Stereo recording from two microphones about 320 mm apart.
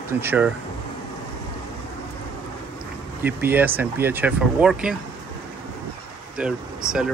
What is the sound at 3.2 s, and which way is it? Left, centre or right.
Speech, centre.